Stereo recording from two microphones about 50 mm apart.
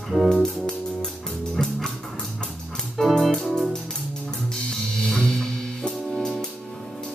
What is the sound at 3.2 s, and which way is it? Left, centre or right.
Organ, centre.